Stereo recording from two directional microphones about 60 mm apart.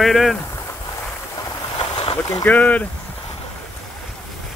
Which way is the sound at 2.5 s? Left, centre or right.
Left.